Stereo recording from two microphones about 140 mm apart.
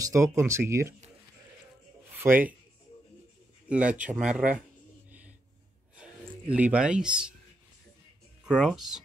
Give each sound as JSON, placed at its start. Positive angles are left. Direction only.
{"t": 0.0, "sound": "speech", "side_deg": -20}
{"t": 2.1, "sound": "speech", "side_deg": -15}
{"t": 3.6, "sound": "speech", "side_deg": -10}
{"t": 5.9, "sound": "a sound", "side_deg": -10}
{"t": 8.5, "sound": "speech", "side_deg": -5}